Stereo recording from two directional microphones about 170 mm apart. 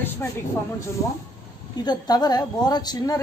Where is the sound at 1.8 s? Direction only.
25° left (ahead or behind).